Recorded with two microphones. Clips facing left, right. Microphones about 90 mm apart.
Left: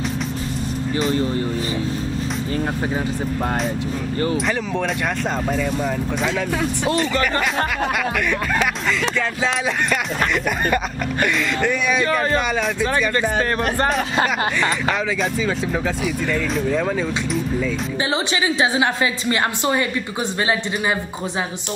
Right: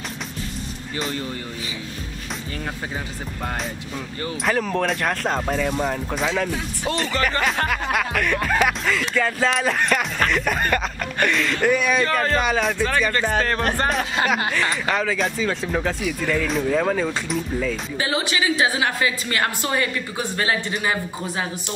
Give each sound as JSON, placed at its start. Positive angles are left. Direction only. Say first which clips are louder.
{"t": 4.5, "sound": "speech", "louder": "right 1 dB", "side_deg": -5}
{"t": 7.9, "sound": "speech", "louder": "left 1 dB", "side_deg": 0}
{"t": 12.1, "sound": "speech", "louder": "left 2 dB", "side_deg": 15}
{"t": 12.4, "sound": "speech", "louder": "even", "side_deg": 0}
{"t": 13.1, "sound": "speech", "louder": "left 1 dB", "side_deg": 15}
{"t": 14.2, "sound": "speech", "louder": "left 1 dB", "side_deg": 0}
{"t": 18.1, "sound": "a woman's voice", "louder": "even", "side_deg": 25}